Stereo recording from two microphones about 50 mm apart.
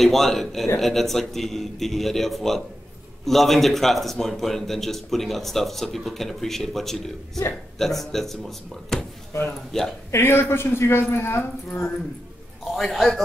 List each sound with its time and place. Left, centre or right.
0.0 s a man's voice: centre
10.1 s speech: left
12.7 s a man's voice: centre